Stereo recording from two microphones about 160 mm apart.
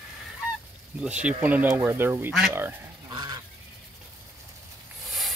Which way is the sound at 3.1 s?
25° right (ahead or behind).